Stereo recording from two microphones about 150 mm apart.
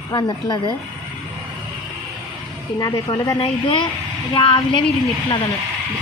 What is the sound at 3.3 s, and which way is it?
Speech, 35° left (ahead or behind).